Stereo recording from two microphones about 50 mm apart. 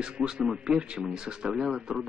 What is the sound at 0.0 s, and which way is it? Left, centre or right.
A man's voice, centre.